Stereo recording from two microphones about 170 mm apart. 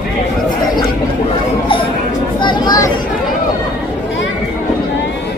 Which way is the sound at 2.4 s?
25° left (ahead or behind).